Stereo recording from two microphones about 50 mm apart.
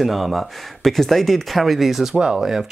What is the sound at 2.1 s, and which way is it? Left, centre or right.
Speech, centre.